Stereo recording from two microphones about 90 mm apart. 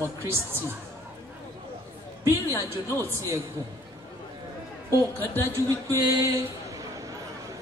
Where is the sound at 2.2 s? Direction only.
30° right (ahead or behind).